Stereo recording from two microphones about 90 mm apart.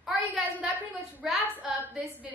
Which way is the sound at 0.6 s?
15° right (ahead or behind).